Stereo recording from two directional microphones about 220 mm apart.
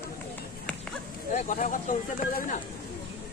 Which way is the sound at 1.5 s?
35° left (ahead or behind).